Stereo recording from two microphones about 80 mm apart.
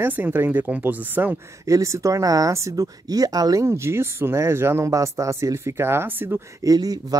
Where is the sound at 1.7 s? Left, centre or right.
Right.